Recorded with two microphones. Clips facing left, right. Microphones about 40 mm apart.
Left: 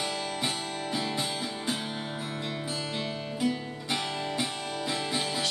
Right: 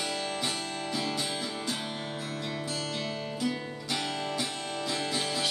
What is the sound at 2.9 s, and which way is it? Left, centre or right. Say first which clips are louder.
Music: left 1 dB; centre.